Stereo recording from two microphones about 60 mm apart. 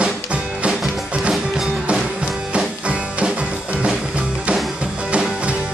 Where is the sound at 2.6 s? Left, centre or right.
Centre.